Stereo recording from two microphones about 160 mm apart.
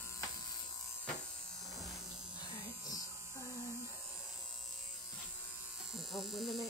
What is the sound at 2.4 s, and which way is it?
Electric shaver, 25° left (ahead or behind).